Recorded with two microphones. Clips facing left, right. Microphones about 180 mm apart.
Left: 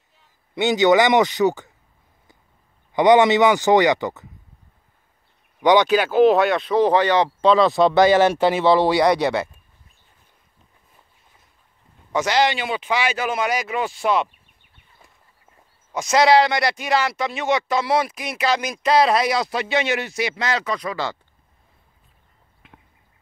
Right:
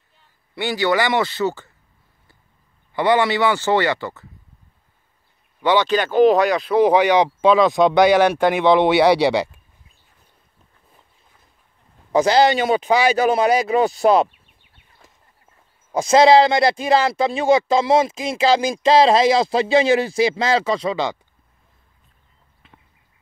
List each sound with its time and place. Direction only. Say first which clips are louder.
0.6 s speech: left 4 dB; 20° left (ahead or behind)
2.9 s speech: left 4 dB; 20° left (ahead or behind)
5.6 s speech: left 2 dB; 15° left (ahead or behind)
6.8 s speech: right 3 dB; 10° right (ahead or behind)
12.1 s speech: right 5 dB; 35° right (ahead or behind)
15.9 s speech: right 4 dB; 30° right (ahead or behind)